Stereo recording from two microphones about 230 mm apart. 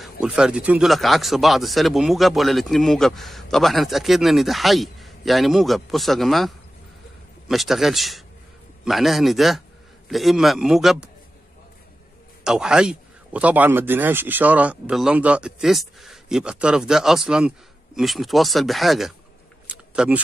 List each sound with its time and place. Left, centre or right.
0.0 s speech: centre
12.4 s speech: centre
19.7 s a sound: centre